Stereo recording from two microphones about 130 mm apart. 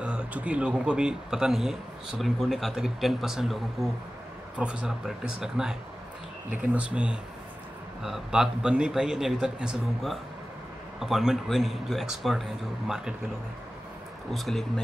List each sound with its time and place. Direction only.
0.0 s speech: 10° right (ahead or behind)
14.3 s speech: centre (ahead or behind)